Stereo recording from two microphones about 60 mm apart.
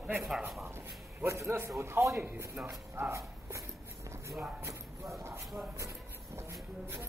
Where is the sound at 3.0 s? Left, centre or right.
Right.